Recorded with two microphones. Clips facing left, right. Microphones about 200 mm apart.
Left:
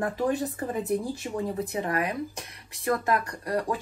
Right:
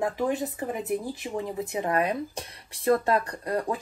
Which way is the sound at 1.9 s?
30° right (ahead or behind).